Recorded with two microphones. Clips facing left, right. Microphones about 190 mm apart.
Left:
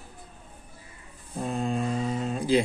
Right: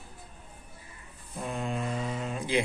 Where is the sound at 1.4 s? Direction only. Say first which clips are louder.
Left 5 dB; 35° left (ahead or behind).